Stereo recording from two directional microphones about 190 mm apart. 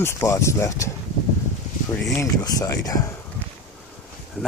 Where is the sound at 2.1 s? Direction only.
15° left (ahead or behind).